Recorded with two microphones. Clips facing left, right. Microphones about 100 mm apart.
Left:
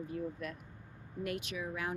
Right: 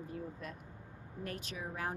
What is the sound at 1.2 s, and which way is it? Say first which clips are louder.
Speech: left 4 dB; 35° right (ahead or behind).